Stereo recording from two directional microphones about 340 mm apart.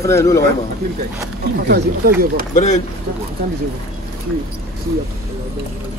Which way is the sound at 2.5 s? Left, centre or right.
Left.